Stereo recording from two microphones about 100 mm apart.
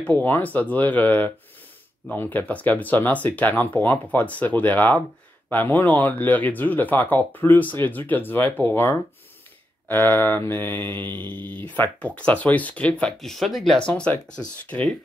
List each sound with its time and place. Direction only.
0.0 s speech: 20° left (ahead or behind)
9.8 s mantra: 20° left (ahead or behind)
11.7 s speech: 15° left (ahead or behind)